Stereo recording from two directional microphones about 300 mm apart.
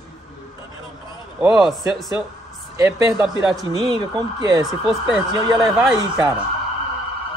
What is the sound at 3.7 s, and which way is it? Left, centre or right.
Speech, centre.